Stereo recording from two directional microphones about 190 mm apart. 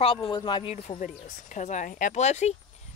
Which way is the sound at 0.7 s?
35° left (ahead or behind).